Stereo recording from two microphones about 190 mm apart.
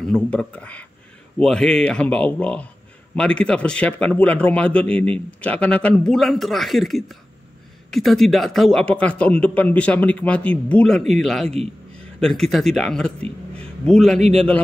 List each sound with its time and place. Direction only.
0.0 s a man's voice: 5° left (ahead or behind)
11.4 s a man's voice: 35° right (ahead or behind)
12.2 s a man's voice: centre (ahead or behind)